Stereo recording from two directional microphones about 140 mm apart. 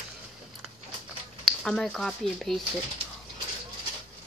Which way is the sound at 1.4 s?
5° left (ahead or behind).